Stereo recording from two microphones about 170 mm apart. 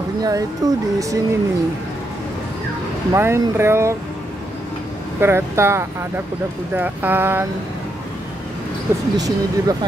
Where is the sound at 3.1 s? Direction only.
15° right (ahead or behind).